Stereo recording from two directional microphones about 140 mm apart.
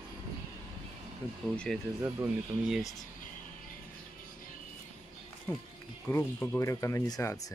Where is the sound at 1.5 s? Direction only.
5° left (ahead or behind).